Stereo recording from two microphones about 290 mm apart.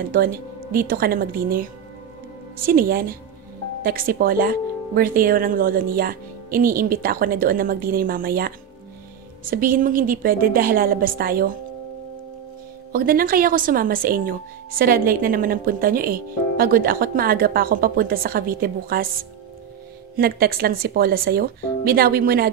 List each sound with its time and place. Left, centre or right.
0.1 s speech: right
12.9 s speech: right
20.2 s speech: right